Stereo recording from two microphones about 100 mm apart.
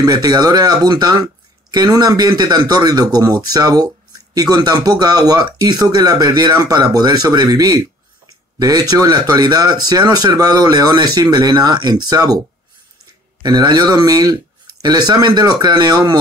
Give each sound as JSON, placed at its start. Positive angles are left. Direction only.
{"t": 0.0, "sound": "speech", "side_deg": -40}
{"t": 13.4, "sound": "speech", "side_deg": -45}